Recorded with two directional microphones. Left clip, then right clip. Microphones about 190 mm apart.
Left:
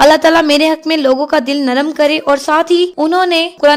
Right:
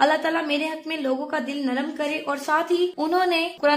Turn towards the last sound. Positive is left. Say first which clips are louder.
# left 11 dB
turn(degrees=40)  # may be behind; listen again after turning